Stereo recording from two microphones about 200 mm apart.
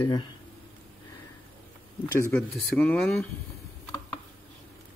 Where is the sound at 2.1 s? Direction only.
10° left (ahead or behind).